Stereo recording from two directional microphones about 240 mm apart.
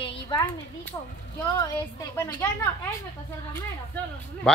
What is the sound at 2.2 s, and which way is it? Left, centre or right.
Speech, centre.